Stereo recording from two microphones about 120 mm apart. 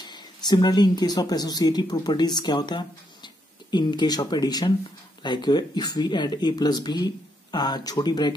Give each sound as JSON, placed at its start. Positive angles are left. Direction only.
{"t": 0.0, "sound": "speech", "side_deg": 35}